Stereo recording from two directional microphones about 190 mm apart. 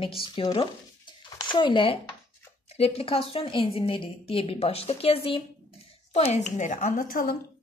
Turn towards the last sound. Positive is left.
turn(degrees=45)  # may be behind; listen again after turning